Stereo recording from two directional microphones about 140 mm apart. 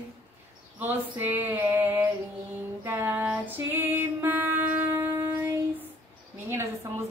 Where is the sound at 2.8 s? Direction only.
15° right (ahead or behind).